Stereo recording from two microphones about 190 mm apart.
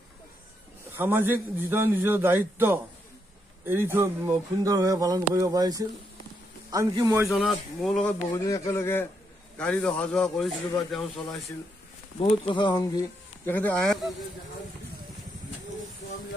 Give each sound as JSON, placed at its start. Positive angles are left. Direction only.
{"t": 0.9, "sound": "speech", "side_deg": -10}
{"t": 7.2, "sound": "a man's voice", "side_deg": 0}
{"t": 8.5, "sound": "a man's voice", "side_deg": 15}
{"t": 12.2, "sound": "speech", "side_deg": 30}
{"t": 13.5, "sound": "a man's voice", "side_deg": 10}